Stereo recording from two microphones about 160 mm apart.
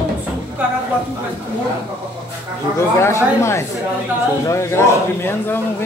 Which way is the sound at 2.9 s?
15° left (ahead or behind).